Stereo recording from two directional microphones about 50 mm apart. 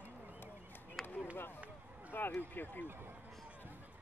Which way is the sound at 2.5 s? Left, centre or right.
Left.